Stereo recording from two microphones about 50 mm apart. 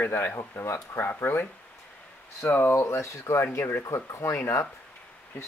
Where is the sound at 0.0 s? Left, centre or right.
Left.